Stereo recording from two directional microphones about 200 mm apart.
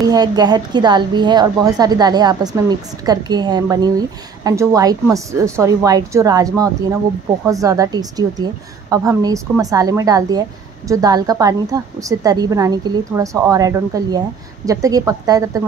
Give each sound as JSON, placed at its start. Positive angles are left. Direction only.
{"t": 0.0, "sound": "a woman's voice", "side_deg": -20}